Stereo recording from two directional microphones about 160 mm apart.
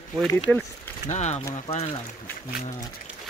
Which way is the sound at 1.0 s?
45° left (ahead or behind).